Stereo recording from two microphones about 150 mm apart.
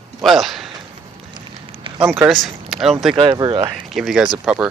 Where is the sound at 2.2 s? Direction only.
Centre (ahead or behind).